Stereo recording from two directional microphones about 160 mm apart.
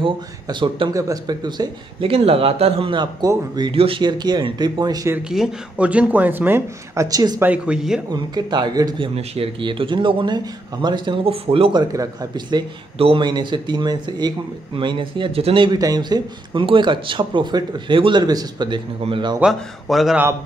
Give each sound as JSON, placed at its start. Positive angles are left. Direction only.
{"t": 0.0, "sound": "speech", "side_deg": -30}
{"t": 5.1, "sound": "speech", "side_deg": -5}
{"t": 7.4, "sound": "speech", "side_deg": -5}
{"t": 8.1, "sound": "speech", "side_deg": -25}
{"t": 9.1, "sound": "speech", "side_deg": -35}
{"t": 11.9, "sound": "speech", "side_deg": -20}
{"t": 19.4, "sound": "a man's voice", "side_deg": 0}